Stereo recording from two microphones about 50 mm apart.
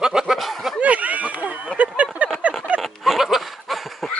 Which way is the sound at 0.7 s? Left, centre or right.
Right.